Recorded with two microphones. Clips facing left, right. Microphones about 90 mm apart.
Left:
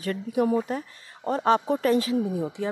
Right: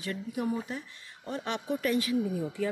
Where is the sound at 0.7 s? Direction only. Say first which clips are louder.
Left 8 dB; 45° left (ahead or behind); by 2.7 s 20° left (ahead or behind).